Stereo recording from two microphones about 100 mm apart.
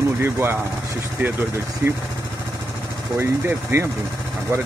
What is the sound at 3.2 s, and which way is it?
Speech, 20° right (ahead or behind).